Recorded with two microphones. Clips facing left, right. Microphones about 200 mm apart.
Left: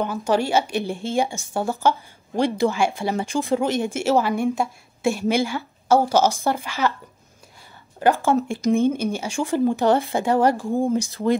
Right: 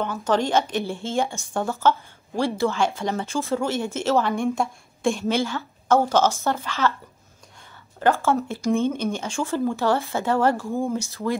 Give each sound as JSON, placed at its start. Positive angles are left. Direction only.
{"t": 0.0, "sound": "a woman's voice", "side_deg": 15}
{"t": 8.0, "sound": "a woman's voice", "side_deg": 15}